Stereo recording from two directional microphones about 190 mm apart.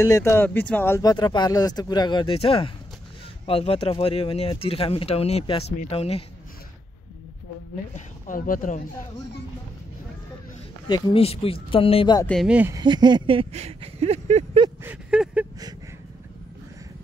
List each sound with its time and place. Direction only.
0.0 s speech: 15° left (ahead or behind); by 6.2 s 30° left (ahead or behind)
7.9 s speech: 45° left (ahead or behind)
10.9 s speech: 30° left (ahead or behind)
12.3 s speech: centre (ahead or behind)
12.7 s speech: 25° right (ahead or behind)
14.8 s a sound: 10° right (ahead or behind)